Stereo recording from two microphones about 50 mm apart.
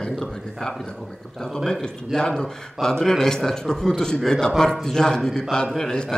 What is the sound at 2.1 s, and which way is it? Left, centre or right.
A man's voice, centre.